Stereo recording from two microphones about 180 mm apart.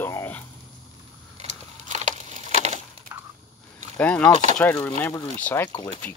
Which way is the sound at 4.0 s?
5° left (ahead or behind).